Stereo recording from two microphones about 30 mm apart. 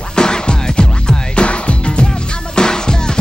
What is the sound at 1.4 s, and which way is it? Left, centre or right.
Music, left.